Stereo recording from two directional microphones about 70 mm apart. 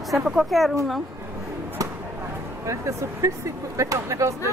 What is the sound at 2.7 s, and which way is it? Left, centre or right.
Speech, right.